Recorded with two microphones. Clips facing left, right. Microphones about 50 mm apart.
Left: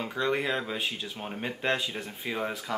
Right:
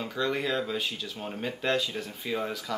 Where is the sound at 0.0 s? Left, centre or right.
Left.